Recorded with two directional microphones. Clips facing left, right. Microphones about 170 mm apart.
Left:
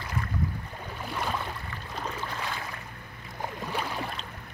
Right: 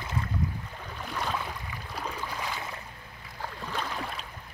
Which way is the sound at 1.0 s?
5° left (ahead or behind).